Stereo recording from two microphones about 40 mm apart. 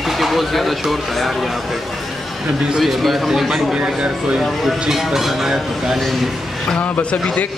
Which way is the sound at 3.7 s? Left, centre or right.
Right.